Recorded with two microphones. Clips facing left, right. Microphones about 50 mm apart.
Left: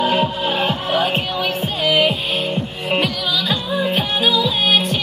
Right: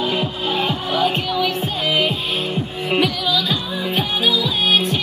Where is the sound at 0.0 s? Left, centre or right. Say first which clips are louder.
Left 4 dB; centre.